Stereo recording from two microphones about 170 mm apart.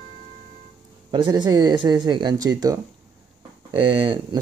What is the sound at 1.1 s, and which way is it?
Speech, 25° right (ahead or behind).